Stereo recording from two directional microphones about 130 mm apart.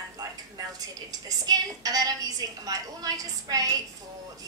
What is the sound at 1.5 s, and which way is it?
A woman's voice, 30° right (ahead or behind).